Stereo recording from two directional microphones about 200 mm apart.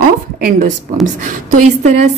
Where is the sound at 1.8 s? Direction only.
35° right (ahead or behind).